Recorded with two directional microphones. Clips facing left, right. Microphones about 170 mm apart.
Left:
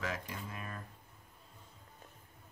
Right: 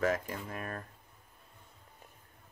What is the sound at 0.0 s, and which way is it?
Speech, 50° right (ahead or behind).